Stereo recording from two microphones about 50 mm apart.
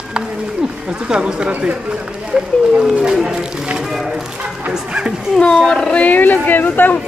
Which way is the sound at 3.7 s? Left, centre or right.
Centre.